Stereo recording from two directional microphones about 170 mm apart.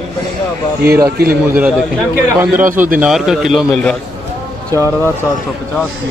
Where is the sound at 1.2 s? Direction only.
10° right (ahead or behind).